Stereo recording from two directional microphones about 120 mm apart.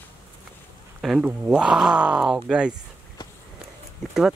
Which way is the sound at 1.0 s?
5° right (ahead or behind).